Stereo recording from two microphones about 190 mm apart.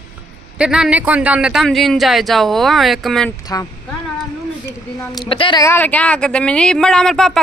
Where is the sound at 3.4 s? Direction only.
20° left (ahead or behind).